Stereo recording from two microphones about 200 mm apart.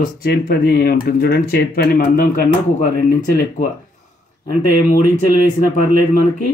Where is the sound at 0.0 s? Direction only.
50° left (ahead or behind).